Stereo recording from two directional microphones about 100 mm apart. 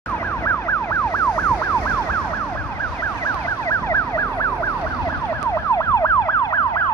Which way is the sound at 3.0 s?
30° left (ahead or behind).